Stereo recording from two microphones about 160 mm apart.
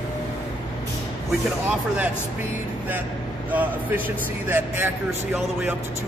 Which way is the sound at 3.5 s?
10° right (ahead or behind).